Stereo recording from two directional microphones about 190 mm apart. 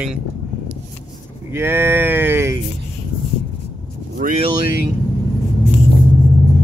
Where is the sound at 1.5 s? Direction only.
10° right (ahead or behind).